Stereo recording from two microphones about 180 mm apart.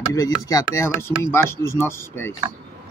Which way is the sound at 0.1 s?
20° left (ahead or behind).